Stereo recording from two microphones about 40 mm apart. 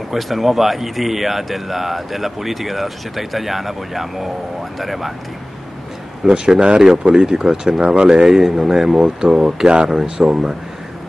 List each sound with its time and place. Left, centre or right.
0.1 s a man's voice: centre
6.3 s speech: centre
7.2 s speech: centre